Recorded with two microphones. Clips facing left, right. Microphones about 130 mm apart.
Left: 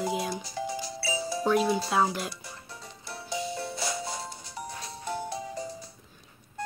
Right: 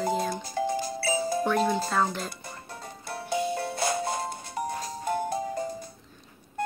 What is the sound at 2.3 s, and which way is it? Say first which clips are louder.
Music: right 1 dB; 50° right (ahead or behind).